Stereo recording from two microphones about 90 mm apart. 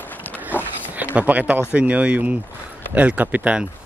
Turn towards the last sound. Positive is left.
turn(degrees=-15)  # may be behind; listen again after turning